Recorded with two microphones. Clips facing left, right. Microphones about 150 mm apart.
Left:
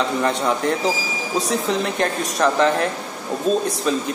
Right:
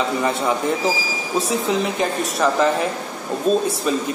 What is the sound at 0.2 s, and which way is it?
Speech, 5° right (ahead or behind).